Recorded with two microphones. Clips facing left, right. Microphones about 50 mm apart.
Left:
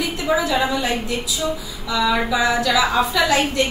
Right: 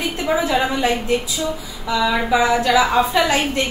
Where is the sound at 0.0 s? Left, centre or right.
Right.